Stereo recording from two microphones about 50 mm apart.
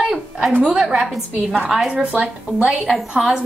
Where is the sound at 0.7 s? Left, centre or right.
Centre.